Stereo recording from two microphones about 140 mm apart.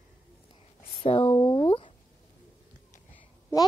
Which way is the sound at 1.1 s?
45° left (ahead or behind).